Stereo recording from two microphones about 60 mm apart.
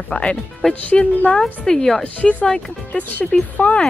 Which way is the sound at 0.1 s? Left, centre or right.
Centre.